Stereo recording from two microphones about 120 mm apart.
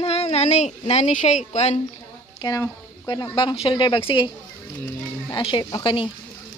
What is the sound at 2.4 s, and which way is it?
Speech, 30° left (ahead or behind).